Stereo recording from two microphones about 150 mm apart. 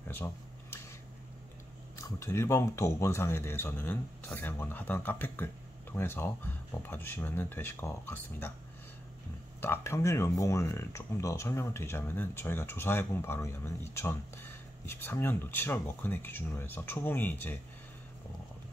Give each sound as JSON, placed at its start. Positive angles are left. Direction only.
{"t": 0.1, "sound": "a sound", "side_deg": 15}
{"t": 2.0, "sound": "speech", "side_deg": 20}
{"t": 9.6, "sound": "speech", "side_deg": 15}